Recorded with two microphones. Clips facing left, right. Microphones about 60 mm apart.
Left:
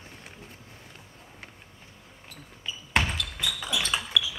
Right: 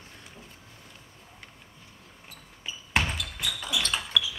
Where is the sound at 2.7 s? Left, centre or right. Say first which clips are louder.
Left 1 dB; centre.